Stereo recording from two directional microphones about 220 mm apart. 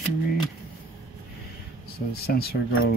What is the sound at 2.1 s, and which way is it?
Speech, 45° left (ahead or behind).